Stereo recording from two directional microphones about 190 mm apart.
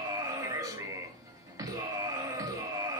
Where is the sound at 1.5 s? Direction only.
20° right (ahead or behind).